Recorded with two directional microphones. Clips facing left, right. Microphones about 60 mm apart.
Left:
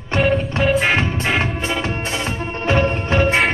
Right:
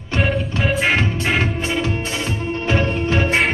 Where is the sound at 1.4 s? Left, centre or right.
Left.